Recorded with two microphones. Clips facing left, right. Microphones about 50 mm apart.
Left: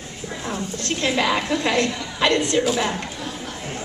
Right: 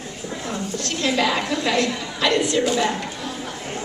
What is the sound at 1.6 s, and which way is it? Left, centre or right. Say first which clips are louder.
Speech: even; left.